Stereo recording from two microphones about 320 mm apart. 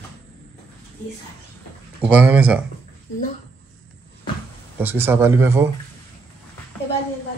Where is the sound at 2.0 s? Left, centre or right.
Centre.